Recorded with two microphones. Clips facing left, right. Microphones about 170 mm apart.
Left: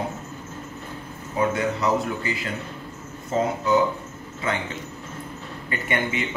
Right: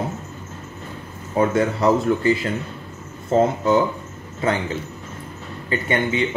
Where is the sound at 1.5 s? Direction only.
30° right (ahead or behind).